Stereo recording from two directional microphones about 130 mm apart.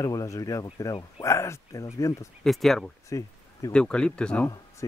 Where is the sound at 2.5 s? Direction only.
Centre (ahead or behind).